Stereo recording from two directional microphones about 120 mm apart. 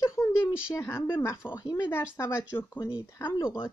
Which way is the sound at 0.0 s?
25° left (ahead or behind).